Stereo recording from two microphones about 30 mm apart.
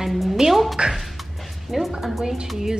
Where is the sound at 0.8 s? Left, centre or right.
Right.